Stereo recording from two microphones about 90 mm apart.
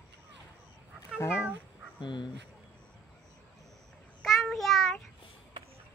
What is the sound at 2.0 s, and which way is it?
Speech, 60° left (ahead or behind).